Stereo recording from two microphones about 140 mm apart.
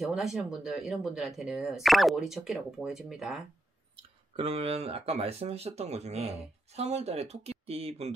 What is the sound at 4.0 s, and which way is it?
Speech, 45° right (ahead or behind).